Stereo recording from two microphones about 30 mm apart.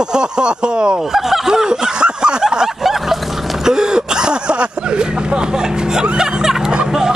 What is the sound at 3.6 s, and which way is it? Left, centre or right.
Speech, right.